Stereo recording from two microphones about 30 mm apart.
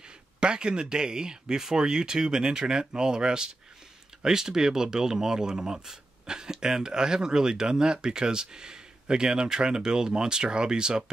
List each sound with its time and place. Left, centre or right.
0.4 s speech: right